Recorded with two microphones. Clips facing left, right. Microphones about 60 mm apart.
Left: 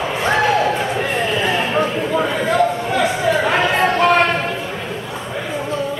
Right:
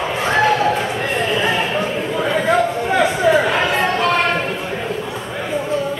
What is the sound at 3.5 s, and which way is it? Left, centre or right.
Chatter, centre.